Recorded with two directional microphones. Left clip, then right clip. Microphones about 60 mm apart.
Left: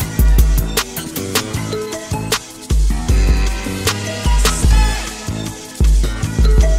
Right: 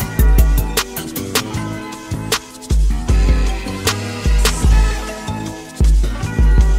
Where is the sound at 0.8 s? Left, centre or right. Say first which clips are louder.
Left 1 dB; centre.